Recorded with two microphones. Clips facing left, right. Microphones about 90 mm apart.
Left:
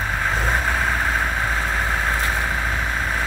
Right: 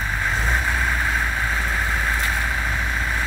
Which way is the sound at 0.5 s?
40° left (ahead or behind).